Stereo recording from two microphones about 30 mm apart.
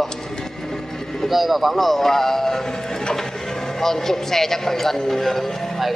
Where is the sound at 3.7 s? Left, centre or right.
Centre.